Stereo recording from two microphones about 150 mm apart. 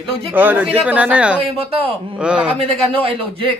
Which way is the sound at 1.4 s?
40° right (ahead or behind).